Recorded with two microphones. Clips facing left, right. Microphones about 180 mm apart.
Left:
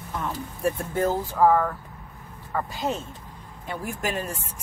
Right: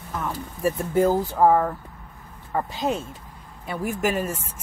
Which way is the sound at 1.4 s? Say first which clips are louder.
Even; 25° right (ahead or behind).